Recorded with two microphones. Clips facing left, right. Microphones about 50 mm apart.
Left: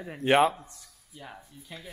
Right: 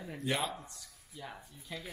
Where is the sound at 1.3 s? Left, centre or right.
Left.